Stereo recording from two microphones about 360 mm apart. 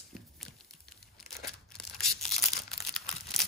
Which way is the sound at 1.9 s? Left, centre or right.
Centre.